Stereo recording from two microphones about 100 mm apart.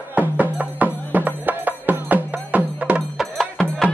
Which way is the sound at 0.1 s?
15° right (ahead or behind).